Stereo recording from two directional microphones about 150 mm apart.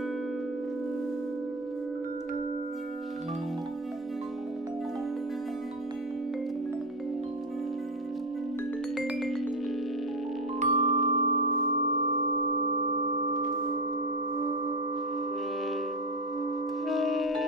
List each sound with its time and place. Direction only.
8.9 s music: centre (ahead or behind)
10.6 s music: 50° right (ahead or behind)
16.8 s music: centre (ahead or behind)